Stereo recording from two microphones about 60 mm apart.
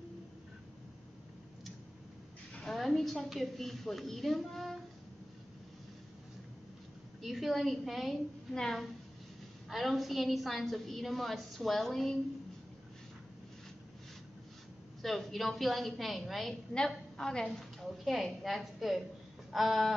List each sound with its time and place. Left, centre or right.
2.6 s a woman's voice: centre
7.2 s a woman's voice: centre
15.0 s a woman's voice: centre